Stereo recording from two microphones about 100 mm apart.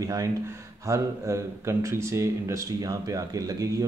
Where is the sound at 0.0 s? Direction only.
35° right (ahead or behind).